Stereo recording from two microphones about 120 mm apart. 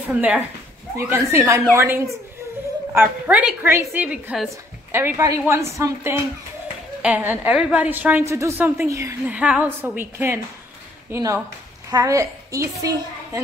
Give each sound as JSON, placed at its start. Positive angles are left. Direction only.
{"t": 0.0, "sound": "a woman's voice", "side_deg": -10}
{"t": 0.9, "sound": "speech", "side_deg": -20}
{"t": 2.9, "sound": "a woman's voice", "side_deg": -15}
{"t": 7.0, "sound": "a woman's voice", "side_deg": -15}
{"t": 8.3, "sound": "speech", "side_deg": -25}
{"t": 9.2, "sound": "a woman's voice", "side_deg": -10}